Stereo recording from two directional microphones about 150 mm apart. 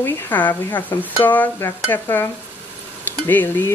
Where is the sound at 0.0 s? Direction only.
10° left (ahead or behind).